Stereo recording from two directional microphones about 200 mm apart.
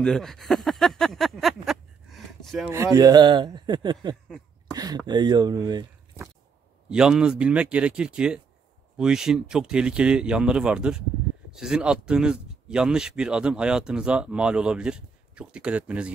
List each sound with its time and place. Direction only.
0.0 s speech: centre (ahead or behind)
2.7 s a man's voice: 15° right (ahead or behind)
6.9 s speech: 5° right (ahead or behind)